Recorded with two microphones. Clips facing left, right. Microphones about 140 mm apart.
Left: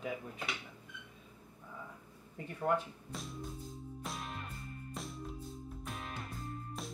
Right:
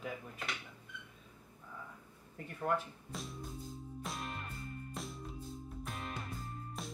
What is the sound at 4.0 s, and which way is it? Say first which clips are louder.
Music: right 1 dB; centre (ahead or behind).